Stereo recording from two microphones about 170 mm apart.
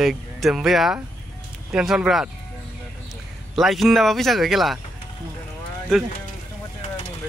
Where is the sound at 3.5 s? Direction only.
Centre (ahead or behind).